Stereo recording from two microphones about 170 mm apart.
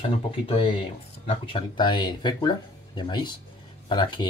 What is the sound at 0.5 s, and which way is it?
Speech, 30° left (ahead or behind).